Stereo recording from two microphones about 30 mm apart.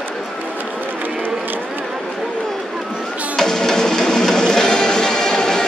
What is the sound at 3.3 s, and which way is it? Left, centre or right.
Music, centre.